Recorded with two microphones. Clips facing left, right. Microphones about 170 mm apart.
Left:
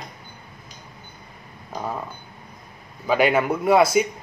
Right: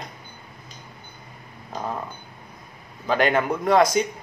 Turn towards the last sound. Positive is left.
turn(degrees=10)  # may be behind; listen again after turning